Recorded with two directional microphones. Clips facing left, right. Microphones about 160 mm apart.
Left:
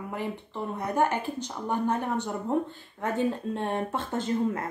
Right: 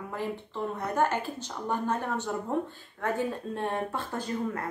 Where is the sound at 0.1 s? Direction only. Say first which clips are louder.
Right 1 dB; 15° left (ahead or behind).